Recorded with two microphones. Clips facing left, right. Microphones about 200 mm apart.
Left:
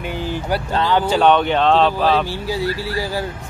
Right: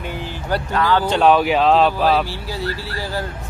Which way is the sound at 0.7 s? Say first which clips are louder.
Even; 20° left (ahead or behind).